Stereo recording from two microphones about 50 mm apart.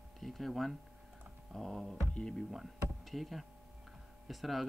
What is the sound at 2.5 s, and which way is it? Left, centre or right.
Speech, centre.